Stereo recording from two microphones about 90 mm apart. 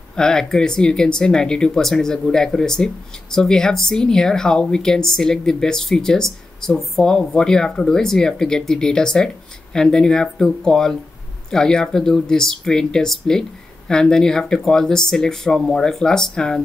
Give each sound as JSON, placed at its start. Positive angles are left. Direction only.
{"t": 0.1, "sound": "speech", "side_deg": 5}